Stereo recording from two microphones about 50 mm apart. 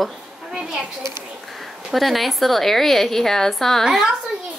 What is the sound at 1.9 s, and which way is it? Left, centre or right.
A woman's voice, centre.